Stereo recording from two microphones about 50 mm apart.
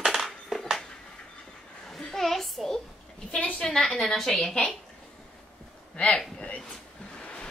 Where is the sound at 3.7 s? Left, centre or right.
Centre.